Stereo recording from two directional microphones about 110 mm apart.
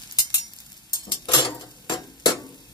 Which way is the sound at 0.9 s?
45° left (ahead or behind).